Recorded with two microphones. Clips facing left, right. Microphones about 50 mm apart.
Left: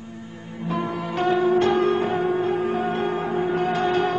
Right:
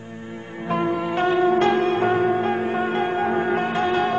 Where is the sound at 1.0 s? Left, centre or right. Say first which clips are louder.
Left 1 dB; right.